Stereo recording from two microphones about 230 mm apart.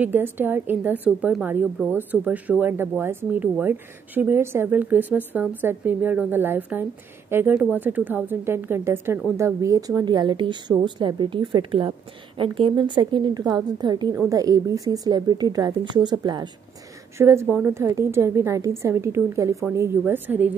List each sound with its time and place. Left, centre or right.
0.0 s a woman's voice: centre